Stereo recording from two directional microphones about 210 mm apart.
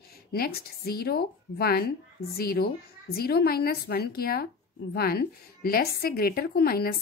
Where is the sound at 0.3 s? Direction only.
45° left (ahead or behind).